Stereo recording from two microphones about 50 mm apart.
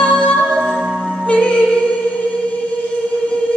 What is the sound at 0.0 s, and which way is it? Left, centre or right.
Music, left.